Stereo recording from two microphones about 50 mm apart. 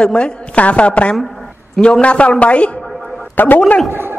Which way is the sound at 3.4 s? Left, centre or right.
Left.